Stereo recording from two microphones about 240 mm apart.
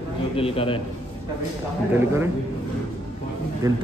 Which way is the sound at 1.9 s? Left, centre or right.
Centre.